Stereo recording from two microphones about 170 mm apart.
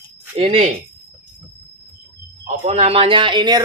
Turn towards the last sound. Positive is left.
turn(degrees=-25)  # may be behind; listen again after turning